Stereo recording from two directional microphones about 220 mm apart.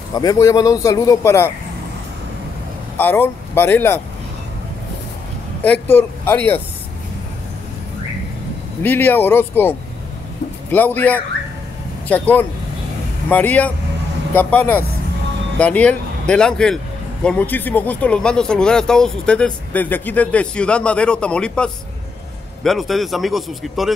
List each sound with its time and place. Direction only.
0.1 s speech: 15° left (ahead or behind)
3.0 s speech: 10° left (ahead or behind)
5.6 s speech: 10° left (ahead or behind)
8.8 s a man's voice: 10° left (ahead or behind)